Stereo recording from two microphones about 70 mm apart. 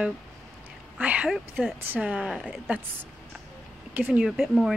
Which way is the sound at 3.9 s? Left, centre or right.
Right.